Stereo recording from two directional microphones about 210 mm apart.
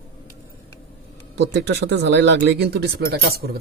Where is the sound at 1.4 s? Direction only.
55° right (ahead or behind).